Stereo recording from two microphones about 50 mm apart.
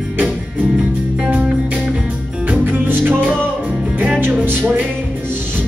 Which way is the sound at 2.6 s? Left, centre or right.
Right.